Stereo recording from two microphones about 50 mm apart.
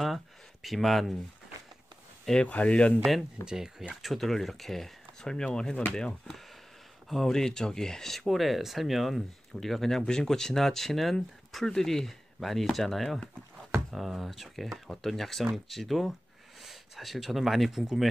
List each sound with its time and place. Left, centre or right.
0.0 s speech: centre
2.4 s speech: left
3.4 s speech: centre
3.9 s speech: centre